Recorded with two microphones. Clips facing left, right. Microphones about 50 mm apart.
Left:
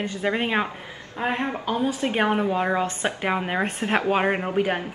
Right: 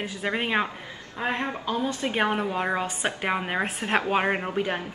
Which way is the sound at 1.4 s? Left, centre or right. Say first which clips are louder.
Left 3 dB; centre.